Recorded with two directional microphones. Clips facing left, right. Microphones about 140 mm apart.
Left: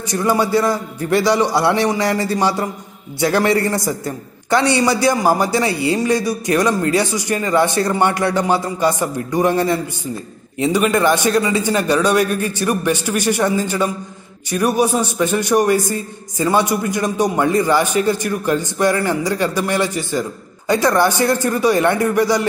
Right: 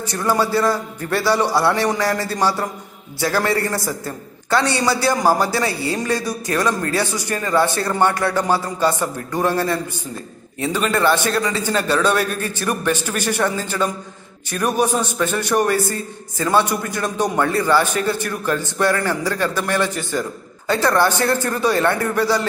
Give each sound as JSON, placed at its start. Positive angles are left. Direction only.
{"t": 0.1, "sound": "a man's voice", "side_deg": 15}